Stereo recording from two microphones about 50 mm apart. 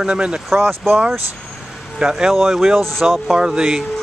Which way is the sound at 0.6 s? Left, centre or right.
Right.